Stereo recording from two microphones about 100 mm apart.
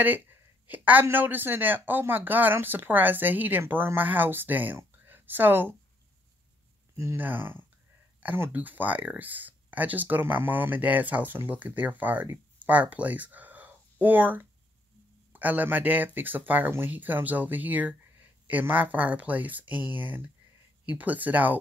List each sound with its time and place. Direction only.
0.0 s a sound: 20° right (ahead or behind)
1.0 s speech: 20° right (ahead or behind)
7.2 s speech: 20° right (ahead or behind)